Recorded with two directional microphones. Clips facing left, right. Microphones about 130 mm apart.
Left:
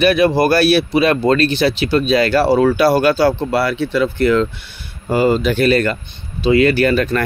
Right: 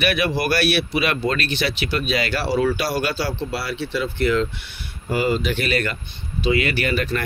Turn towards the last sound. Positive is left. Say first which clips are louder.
# left 8 dB
turn(degrees=40)  # may be behind; listen again after turning